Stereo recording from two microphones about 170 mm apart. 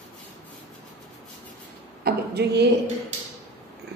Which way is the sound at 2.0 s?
75° right (ahead or behind).